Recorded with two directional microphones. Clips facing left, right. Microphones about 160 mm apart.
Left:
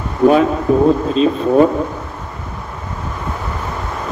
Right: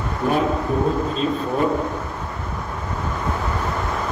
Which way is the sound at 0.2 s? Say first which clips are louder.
Left 9 dB; 90° left.